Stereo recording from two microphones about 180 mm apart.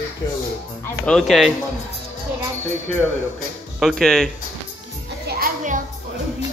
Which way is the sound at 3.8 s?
Centre (ahead or behind).